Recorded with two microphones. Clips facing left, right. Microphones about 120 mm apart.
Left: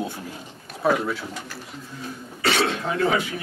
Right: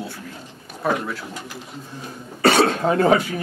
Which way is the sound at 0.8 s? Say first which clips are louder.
Left 2 dB; centre (ahead or behind).